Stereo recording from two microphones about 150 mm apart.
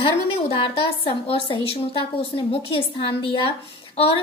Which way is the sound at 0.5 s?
35° left (ahead or behind).